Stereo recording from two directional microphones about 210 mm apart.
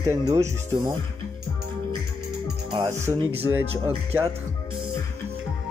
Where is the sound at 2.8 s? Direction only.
15° right (ahead or behind).